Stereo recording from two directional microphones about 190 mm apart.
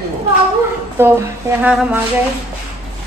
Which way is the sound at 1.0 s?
10° right (ahead or behind).